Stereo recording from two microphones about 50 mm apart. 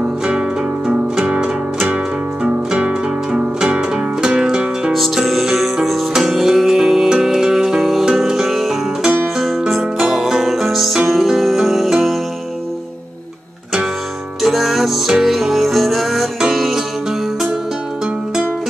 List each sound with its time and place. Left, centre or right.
0.2 s music: centre
4.9 s music: centre
14.4 s music: centre